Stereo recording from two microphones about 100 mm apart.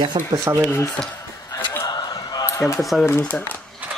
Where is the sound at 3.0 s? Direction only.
25° left (ahead or behind).